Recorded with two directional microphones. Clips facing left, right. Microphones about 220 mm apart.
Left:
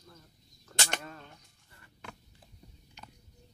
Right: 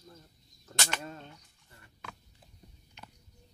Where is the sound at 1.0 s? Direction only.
25° right (ahead or behind).